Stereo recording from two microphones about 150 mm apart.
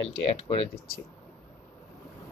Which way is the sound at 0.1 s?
40° left (ahead or behind).